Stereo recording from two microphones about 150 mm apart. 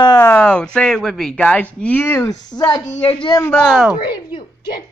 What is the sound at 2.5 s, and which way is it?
Speech, 25° left (ahead or behind).